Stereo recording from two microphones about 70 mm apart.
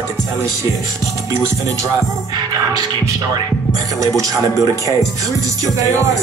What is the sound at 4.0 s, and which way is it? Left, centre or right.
Speech, right.